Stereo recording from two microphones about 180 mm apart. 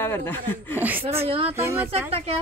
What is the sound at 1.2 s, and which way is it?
Speech, 30° right (ahead or behind).